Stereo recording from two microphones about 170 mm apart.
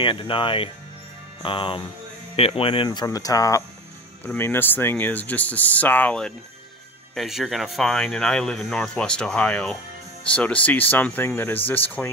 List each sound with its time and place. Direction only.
0.0 s speech: 30° left (ahead or behind); by 12.1 s 10° left (ahead or behind)